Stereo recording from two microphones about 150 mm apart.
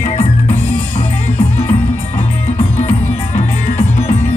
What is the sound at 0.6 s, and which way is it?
Music, 15° left (ahead or behind).